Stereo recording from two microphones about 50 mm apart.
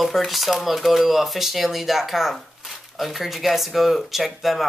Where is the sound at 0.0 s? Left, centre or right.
Centre.